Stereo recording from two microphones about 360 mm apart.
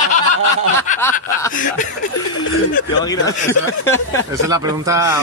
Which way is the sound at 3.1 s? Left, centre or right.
Centre.